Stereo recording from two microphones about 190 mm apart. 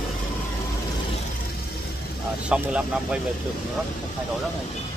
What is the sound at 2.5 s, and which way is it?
Speech, 5° right (ahead or behind).